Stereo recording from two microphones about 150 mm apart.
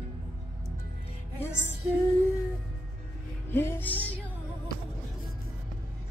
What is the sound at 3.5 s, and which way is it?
Music, 15° left (ahead or behind).